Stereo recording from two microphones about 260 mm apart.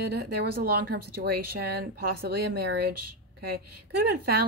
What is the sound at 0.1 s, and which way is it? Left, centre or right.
Speech, right.